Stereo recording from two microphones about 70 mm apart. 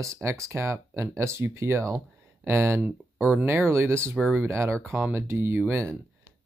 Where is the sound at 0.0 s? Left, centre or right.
Right.